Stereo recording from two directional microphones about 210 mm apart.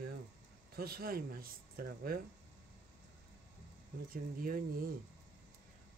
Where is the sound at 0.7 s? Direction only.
45° right (ahead or behind).